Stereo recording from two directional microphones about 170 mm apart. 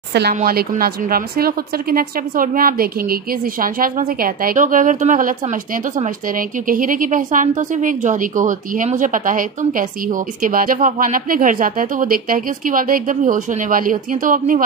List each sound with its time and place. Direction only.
0.3 s a woman's voice: 60° right (ahead or behind)